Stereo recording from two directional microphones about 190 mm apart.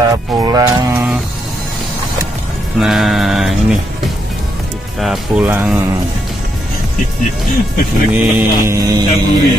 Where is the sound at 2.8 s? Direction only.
Centre (ahead or behind).